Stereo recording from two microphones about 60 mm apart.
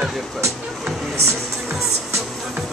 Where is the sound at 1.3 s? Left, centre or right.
Centre.